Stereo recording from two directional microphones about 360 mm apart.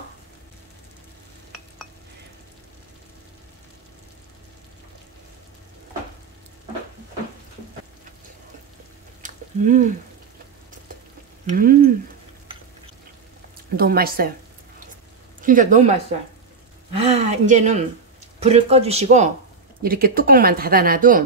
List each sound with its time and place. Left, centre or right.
9.2 s a sound: right
11.4 s speech: right
13.7 s speech: right
15.4 s speech: right
16.9 s speech: centre